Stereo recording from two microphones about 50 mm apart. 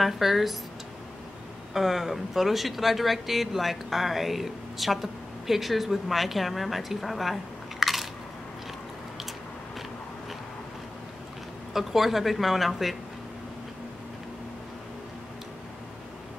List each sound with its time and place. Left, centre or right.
0.0 s speech: centre
1.7 s speech: centre
7.8 s biting: centre
11.7 s speech: centre